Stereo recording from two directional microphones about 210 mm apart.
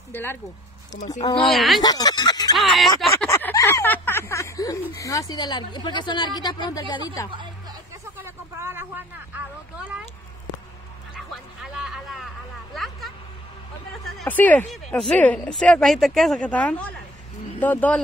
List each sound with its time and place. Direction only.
0.1 s speech: 10° left (ahead or behind)
0.9 s speech: 35° left (ahead or behind)
1.3 s speech: centre (ahead or behind)
1.8 s speech: 20° left (ahead or behind)
2.5 s speech: centre (ahead or behind)
3.3 s a sound: 10° left (ahead or behind)
4.9 s speech: 15° left (ahead or behind)
8.2 s a sound: 10° right (ahead or behind)
11.1 s music: centre (ahead or behind)
12.7 s a sound: centre (ahead or behind)
14.0 s speech: 10° left (ahead or behind)